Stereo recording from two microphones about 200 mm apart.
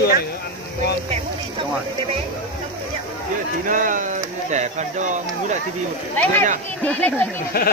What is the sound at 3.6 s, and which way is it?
Speech, 40° right (ahead or behind).